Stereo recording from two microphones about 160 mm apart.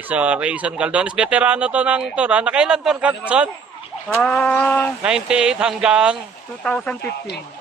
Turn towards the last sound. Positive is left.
turn(degrees=90)